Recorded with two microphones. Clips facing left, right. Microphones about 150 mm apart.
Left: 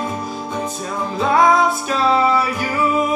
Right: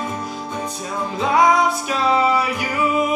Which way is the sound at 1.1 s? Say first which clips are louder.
Left 1 dB; 15° right (ahead or behind).